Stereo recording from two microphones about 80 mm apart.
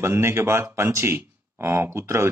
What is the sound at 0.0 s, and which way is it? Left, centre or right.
A man's voice, right.